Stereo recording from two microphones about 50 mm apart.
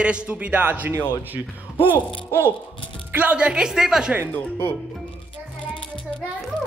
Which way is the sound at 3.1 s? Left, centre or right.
Right.